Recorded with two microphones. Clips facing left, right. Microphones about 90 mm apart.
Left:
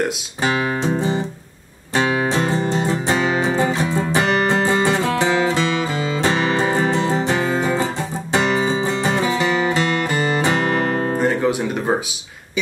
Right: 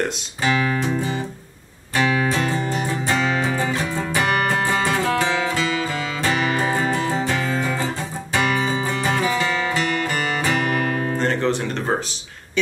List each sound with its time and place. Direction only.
0.4 s music: 25° left (ahead or behind)
11.1 s music: 10° left (ahead or behind)